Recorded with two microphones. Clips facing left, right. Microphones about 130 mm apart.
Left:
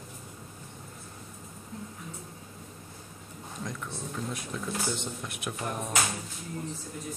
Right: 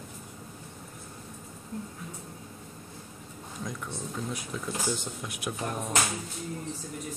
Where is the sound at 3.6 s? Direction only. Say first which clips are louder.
Right 1 dB; centre (ahead or behind).